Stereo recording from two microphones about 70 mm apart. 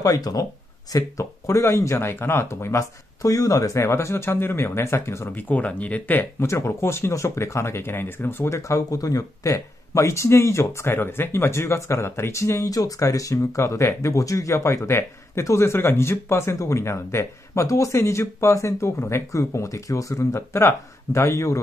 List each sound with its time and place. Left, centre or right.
0.0 s speech: left
0.9 s speech: left
5.3 s speech: left
6.4 s speech: left